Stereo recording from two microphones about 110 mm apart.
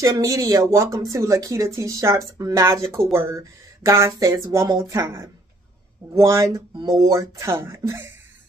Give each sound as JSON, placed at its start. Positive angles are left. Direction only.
{"t": 0.0, "sound": "speech", "side_deg": -30}